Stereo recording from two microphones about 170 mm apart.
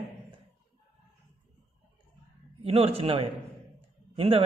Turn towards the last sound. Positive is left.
turn(degrees=-35)  # may be behind; listen again after turning